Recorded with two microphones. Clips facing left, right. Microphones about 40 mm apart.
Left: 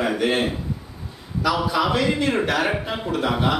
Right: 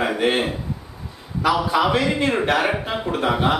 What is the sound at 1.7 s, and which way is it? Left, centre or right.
A man's voice, right.